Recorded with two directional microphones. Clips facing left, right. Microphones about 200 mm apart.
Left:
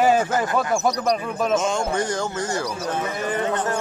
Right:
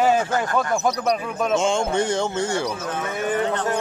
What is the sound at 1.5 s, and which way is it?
Speech, 25° right (ahead or behind).